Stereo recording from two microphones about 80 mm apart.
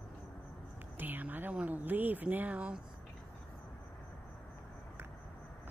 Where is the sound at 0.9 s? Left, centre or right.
Right.